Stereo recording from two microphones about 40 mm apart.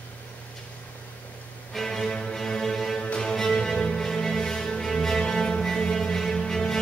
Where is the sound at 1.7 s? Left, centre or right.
Centre.